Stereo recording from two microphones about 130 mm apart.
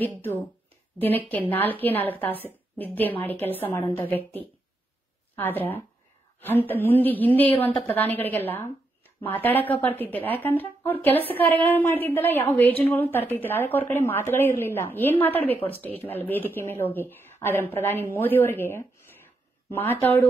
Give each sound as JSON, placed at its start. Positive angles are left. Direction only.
{"t": 0.0, "sound": "a woman's voice", "side_deg": 15}
{"t": 5.3, "sound": "a woman's voice", "side_deg": 15}